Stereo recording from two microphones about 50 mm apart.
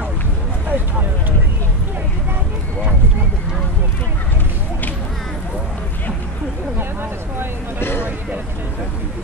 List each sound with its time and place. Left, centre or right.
0.7 s vehicle: right